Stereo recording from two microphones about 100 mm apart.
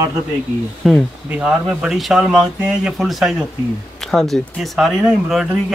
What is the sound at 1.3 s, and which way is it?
Speech, 10° right (ahead or behind).